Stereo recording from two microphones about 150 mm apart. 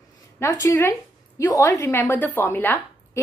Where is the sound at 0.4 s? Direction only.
20° left (ahead or behind).